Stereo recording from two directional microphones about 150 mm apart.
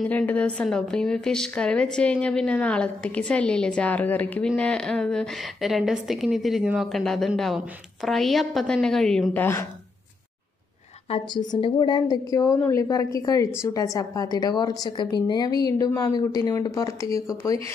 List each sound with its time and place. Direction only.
0.1 s a woman's voice: 10° left (ahead or behind)
11.1 s a woman's voice: 35° left (ahead or behind)